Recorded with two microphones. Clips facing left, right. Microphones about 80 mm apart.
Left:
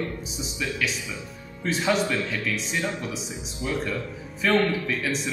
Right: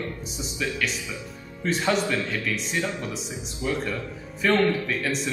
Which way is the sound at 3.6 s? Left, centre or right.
Centre.